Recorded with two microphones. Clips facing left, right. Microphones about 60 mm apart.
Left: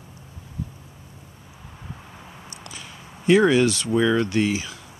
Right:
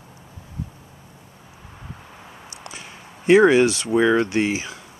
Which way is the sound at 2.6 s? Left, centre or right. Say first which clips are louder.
Right 3 dB; right.